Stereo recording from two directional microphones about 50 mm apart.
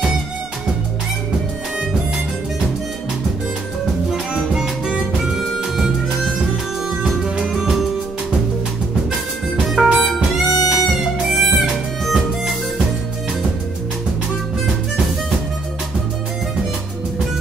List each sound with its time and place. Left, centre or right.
4.6 s music: centre
7.2 s music: centre
9.8 s music: centre